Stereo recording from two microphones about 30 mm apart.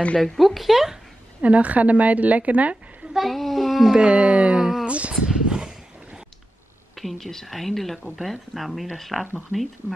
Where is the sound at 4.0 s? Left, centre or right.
Right.